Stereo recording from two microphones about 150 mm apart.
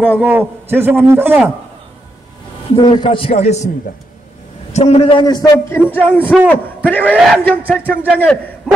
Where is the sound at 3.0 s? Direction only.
35° left (ahead or behind).